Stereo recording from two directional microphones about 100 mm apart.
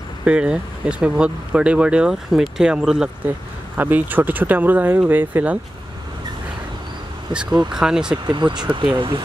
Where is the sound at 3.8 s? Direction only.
20° right (ahead or behind).